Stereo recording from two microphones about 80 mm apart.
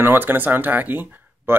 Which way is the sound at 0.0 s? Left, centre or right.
Right.